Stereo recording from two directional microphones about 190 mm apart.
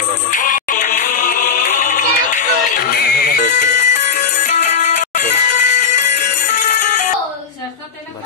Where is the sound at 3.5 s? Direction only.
40° left (ahead or behind).